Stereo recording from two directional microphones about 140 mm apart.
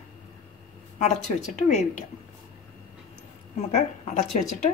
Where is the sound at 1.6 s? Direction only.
60° left (ahead or behind).